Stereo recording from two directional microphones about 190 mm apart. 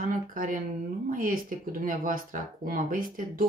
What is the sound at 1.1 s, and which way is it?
Speech, 45° right (ahead or behind).